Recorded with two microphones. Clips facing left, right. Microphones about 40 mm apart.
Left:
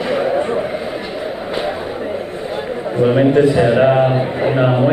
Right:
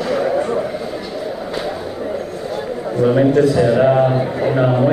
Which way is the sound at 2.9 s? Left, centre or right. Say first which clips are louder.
Left 1 dB; left.